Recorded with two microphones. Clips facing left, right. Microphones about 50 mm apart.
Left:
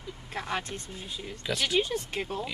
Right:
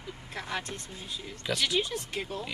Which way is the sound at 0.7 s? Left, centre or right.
Left.